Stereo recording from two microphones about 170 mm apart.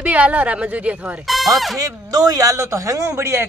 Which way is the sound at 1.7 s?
20° right (ahead or behind).